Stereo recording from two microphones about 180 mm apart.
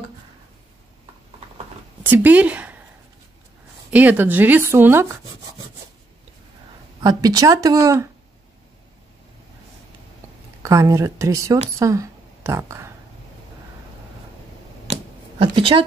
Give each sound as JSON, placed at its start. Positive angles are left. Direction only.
{"t": 2.0, "sound": "a woman's voice", "side_deg": -10}
{"t": 3.9, "sound": "speech", "side_deg": -10}
{"t": 7.0, "sound": "speech", "side_deg": -20}
{"t": 10.6, "sound": "a woman's voice", "side_deg": -20}
{"t": 15.3, "sound": "speech", "side_deg": -30}